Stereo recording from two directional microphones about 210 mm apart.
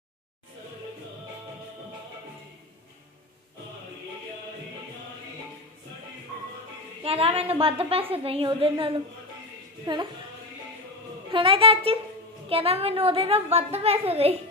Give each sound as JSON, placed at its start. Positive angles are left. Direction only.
{"t": 7.0, "sound": "a woman's voice", "side_deg": -25}
{"t": 11.2, "sound": "a woman's voice", "side_deg": -25}